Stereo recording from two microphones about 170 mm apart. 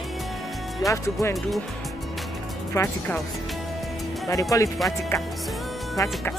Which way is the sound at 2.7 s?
15° left (ahead or behind).